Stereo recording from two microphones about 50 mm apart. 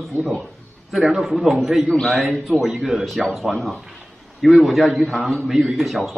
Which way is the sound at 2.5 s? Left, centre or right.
Centre.